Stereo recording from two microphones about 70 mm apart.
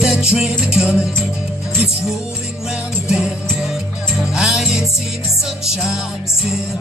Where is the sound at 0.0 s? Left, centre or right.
Centre.